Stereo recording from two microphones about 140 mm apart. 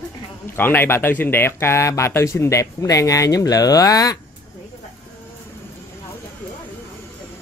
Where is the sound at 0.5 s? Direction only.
15° left (ahead or behind).